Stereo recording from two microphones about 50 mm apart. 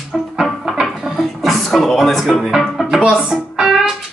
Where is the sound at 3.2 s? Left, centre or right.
Centre.